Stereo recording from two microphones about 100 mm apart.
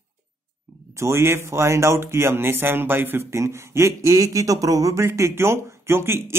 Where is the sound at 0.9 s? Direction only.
25° right (ahead or behind).